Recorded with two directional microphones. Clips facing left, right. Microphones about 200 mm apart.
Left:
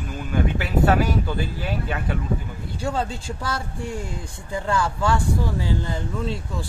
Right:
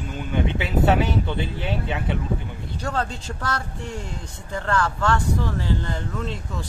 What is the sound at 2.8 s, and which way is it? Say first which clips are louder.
Speech: left 1 dB; 10° left (ahead or behind).